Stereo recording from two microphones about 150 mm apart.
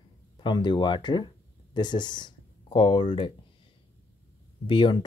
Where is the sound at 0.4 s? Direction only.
30° left (ahead or behind).